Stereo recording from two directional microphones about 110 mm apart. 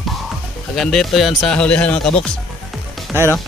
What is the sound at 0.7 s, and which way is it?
Speech, 5° left (ahead or behind).